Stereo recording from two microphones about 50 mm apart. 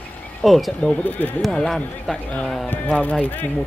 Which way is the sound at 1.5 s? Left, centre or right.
Centre.